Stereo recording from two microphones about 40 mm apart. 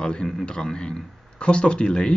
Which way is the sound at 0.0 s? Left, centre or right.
Left.